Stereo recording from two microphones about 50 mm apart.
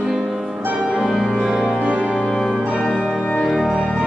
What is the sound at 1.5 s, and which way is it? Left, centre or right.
Music, centre.